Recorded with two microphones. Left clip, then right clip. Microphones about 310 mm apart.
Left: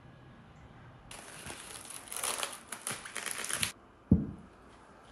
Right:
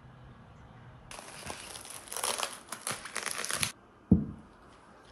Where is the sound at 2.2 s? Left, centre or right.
Right.